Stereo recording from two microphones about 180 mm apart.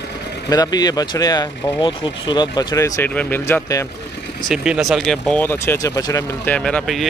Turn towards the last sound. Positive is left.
turn(degrees=5)  # may be behind; listen again after turning